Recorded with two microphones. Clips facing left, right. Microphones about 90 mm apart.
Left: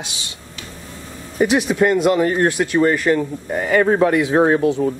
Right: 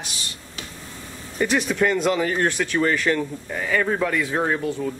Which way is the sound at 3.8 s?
35° left (ahead or behind).